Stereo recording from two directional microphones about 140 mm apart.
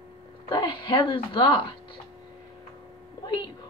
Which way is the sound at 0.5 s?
35° left (ahead or behind).